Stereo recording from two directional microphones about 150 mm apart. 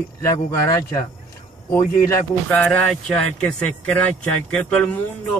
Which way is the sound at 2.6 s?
5° left (ahead or behind).